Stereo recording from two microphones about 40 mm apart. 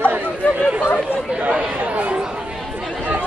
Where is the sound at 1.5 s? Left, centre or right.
Right.